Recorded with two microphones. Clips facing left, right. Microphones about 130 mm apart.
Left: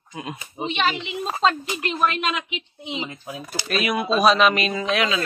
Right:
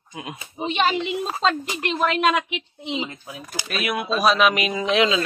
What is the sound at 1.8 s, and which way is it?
Speech, 60° right (ahead or behind).